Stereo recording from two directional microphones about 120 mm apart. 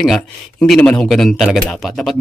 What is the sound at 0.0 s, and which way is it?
Speech, centre (ahead or behind).